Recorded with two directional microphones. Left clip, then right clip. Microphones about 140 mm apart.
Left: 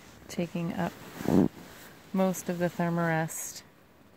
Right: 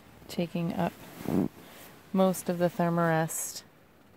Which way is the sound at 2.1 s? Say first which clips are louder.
Right 3 dB; 20° right (ahead or behind).